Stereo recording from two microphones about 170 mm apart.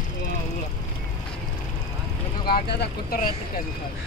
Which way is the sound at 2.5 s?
70° left (ahead or behind).